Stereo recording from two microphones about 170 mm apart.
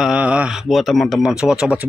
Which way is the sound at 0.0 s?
5° right (ahead or behind).